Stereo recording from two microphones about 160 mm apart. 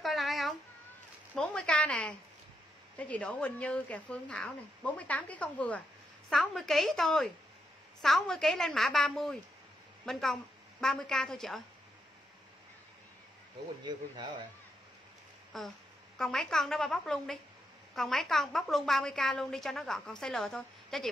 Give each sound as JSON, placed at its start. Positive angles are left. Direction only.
{"t": 0.0, "sound": "a sound", "side_deg": 0}
{"t": 3.1, "sound": "a woman's voice", "side_deg": 5}
{"t": 13.8, "sound": "speech", "side_deg": -30}
{"t": 15.5, "sound": "a woman's voice", "side_deg": 0}